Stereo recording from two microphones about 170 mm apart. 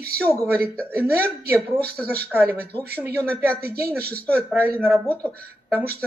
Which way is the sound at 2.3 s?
10° right (ahead or behind).